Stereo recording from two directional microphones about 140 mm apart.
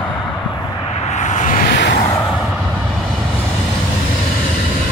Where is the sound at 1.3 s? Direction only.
65° left (ahead or behind).